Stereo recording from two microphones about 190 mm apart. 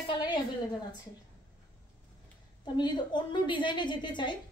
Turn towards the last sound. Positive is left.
turn(degrees=25)  # may be behind; listen again after turning